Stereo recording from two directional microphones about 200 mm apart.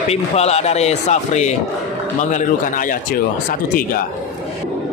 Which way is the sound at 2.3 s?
40° left (ahead or behind).